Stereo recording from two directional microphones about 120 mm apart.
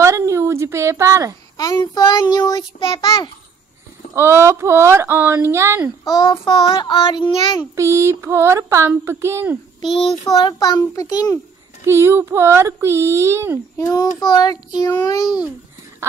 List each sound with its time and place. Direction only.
0.0 s a sound: 25° right (ahead or behind)
1.6 s a child's voice: 30° left (ahead or behind)
4.1 s speech: 20° right (ahead or behind)
6.0 s a child's voice: 35° left (ahead or behind)
6.4 s a child's voice: 45° left (ahead or behind)
7.7 s speech: 25° right (ahead or behind)
9.8 s child singing: 45° left (ahead or behind)
10.4 s a child's voice: 35° left (ahead or behind)
11.8 s speech: 20° right (ahead or behind)
13.7 s a child's voice: 30° left (ahead or behind)